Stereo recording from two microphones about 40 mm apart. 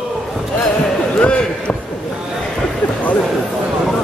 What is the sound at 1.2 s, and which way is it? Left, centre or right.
Basketball bounce, left.